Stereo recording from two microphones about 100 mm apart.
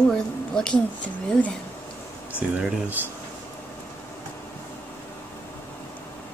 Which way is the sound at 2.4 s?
10° right (ahead or behind).